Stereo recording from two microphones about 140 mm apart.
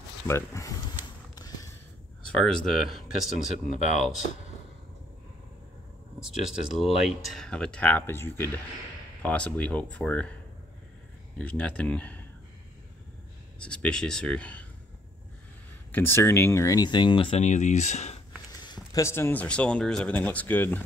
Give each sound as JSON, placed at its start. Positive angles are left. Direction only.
{"t": 0.3, "sound": "speech", "side_deg": 25}
{"t": 1.3, "sound": "a sound", "side_deg": 25}
{"t": 2.2, "sound": "speech", "side_deg": 5}
{"t": 6.2, "sound": "speech", "side_deg": -5}
{"t": 11.3, "sound": "speech", "side_deg": 10}
{"t": 13.6, "sound": "speech", "side_deg": 5}
{"t": 15.9, "sound": "speech", "side_deg": 15}
{"t": 17.4, "sound": "speech", "side_deg": 60}
{"t": 18.6, "sound": "a sound", "side_deg": 30}
{"t": 19.0, "sound": "speech", "side_deg": 20}